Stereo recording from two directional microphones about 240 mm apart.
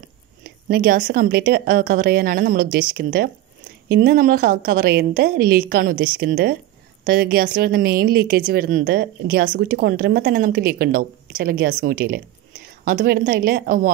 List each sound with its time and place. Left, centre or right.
0.4 s a woman's voice: right